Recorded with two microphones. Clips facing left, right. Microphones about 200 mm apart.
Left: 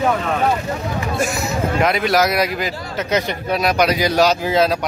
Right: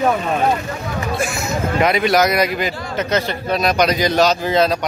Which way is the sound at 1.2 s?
40° left (ahead or behind).